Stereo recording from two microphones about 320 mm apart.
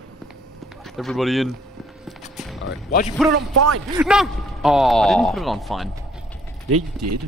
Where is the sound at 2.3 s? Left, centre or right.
Centre.